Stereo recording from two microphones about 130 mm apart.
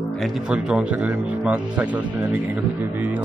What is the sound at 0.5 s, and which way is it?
Speech, 5° right (ahead or behind).